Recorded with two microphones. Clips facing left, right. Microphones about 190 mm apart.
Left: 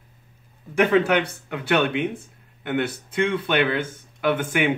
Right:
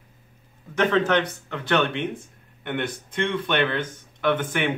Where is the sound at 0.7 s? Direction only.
10° left (ahead or behind).